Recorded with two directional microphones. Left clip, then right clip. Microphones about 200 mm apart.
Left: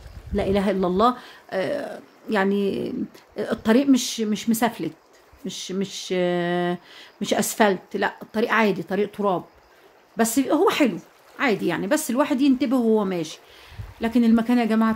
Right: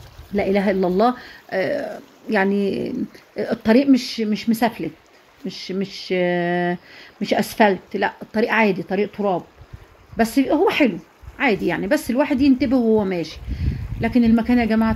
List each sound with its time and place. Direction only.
0.4 s speech: centre (ahead or behind)